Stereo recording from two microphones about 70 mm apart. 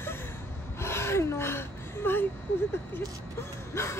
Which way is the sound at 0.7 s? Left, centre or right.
Left.